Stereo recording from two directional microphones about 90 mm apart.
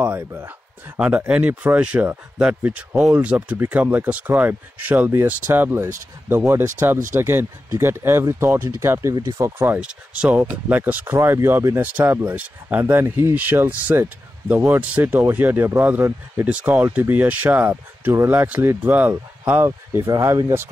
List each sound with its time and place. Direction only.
0.0 s speech: 25° right (ahead or behind)
0.9 s speech: 15° right (ahead or behind)
9.8 s speech: 10° right (ahead or behind); by 20.1 s 25° right (ahead or behind)
20.1 s speech: 40° right (ahead or behind)